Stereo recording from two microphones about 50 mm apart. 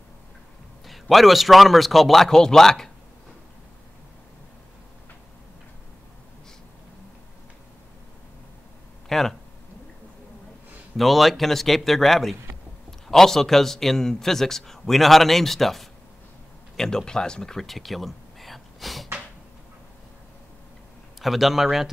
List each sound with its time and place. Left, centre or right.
0.8 s a man's voice: centre
9.1 s a man's voice: centre
11.0 s a man's voice: centre
21.2 s a man's voice: centre